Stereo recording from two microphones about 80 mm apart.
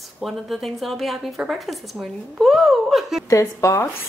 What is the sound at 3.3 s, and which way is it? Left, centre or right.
Speech, left.